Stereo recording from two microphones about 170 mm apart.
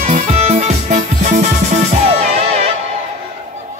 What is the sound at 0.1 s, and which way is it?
Music, 40° right (ahead or behind).